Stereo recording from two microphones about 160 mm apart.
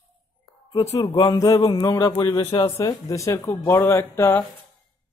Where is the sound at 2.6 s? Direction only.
20° left (ahead or behind).